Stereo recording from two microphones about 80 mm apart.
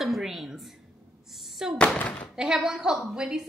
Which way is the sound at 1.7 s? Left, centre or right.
Centre.